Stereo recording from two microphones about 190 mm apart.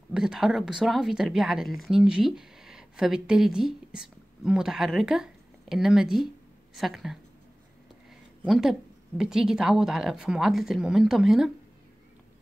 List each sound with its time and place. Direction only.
0.1 s speech: 5° right (ahead or behind)
8.5 s a woman's voice: centre (ahead or behind)